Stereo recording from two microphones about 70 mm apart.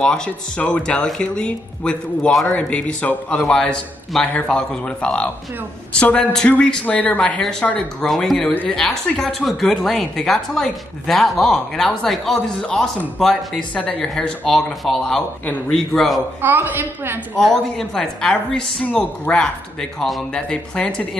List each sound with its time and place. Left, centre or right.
0.0 s a woman's voice: centre
16.3 s a woman's voice: right
17.4 s a woman's voice: centre